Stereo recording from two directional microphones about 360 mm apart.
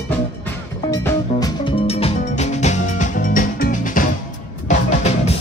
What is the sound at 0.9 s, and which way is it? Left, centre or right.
Music, centre.